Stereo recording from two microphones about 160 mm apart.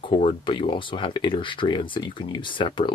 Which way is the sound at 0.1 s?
35° left (ahead or behind).